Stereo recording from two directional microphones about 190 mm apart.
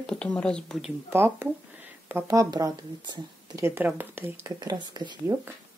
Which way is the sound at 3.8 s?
10° right (ahead or behind).